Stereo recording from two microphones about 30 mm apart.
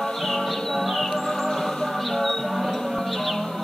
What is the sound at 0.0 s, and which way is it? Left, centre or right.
Music, centre.